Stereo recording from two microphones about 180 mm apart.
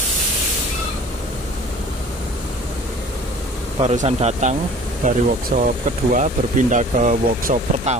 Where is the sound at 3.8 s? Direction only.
35° right (ahead or behind).